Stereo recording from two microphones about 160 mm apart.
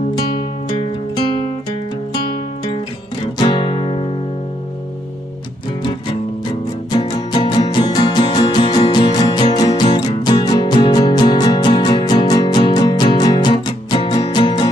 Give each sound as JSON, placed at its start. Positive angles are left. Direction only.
{"t": 3.3, "sound": "music", "side_deg": 30}
{"t": 7.0, "sound": "music", "side_deg": 30}